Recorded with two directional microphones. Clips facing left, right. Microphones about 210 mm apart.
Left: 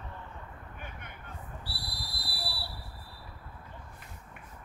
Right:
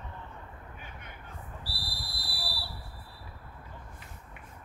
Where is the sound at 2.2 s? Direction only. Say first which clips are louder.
Left 2 dB; centre (ahead or behind).